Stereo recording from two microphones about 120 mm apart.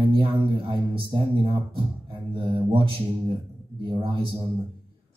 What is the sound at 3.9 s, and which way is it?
Speech, 45° right (ahead or behind).